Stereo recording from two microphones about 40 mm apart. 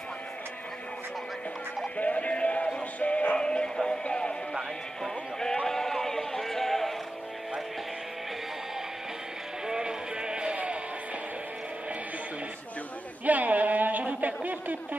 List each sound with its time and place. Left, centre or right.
2.0 s music: left
3.3 s music: centre
5.7 s music: centre
9.7 s music: right
13.2 s a sound: right